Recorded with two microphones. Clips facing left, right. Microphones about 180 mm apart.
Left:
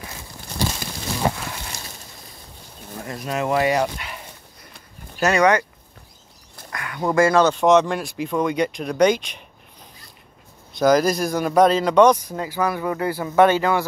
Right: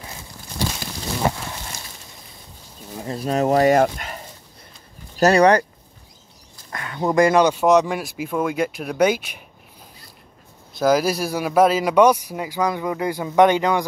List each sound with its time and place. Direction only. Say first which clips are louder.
3.0 s speech: right 4 dB; 30° right (ahead or behind); by 4.2 s 45° right (ahead or behind)
5.1 s speech: right 3 dB; 35° right (ahead or behind)
6.7 s speech: right 1 dB; 25° right (ahead or behind); by 9.4 s 5° right (ahead or behind)
10.8 s speech: left 1 dB; 5° right (ahead or behind)